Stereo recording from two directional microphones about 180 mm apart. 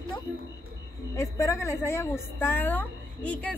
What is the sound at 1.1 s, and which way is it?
A woman's voice, 15° left (ahead or behind).